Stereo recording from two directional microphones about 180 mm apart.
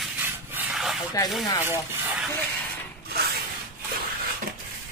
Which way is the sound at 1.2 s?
20° left (ahead or behind).